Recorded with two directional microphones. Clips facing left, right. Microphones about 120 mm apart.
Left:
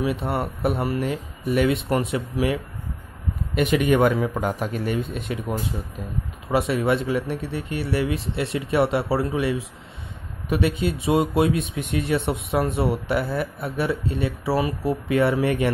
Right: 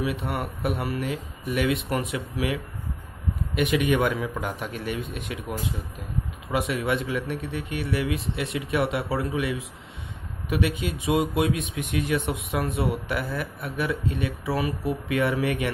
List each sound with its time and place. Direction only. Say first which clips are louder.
0.0 s speech: left 4 dB; 35° left (ahead or behind)
3.5 s speech: left 4 dB; 40° left (ahead or behind)